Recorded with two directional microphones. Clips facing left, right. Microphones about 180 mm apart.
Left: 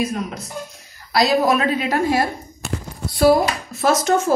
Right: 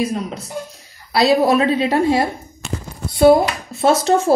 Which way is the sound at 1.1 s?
35° right (ahead or behind).